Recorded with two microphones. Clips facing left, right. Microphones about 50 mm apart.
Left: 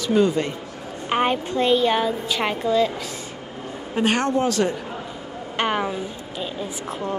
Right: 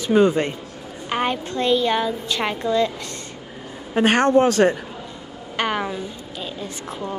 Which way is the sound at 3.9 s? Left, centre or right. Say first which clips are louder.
Right 5 dB; right.